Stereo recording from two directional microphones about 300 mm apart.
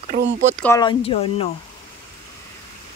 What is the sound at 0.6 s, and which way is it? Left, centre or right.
Speech, centre.